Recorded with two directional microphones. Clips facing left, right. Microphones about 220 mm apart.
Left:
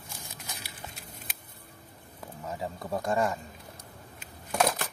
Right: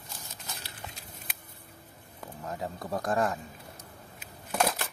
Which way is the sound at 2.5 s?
Centre (ahead or behind).